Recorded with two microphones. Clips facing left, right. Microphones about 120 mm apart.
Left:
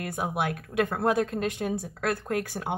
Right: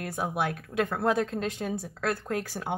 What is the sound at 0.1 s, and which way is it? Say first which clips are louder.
Speech: even; 15° left (ahead or behind).